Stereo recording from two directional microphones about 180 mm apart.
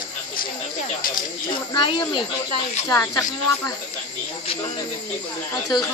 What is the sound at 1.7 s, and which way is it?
A woman's voice, 25° left (ahead or behind).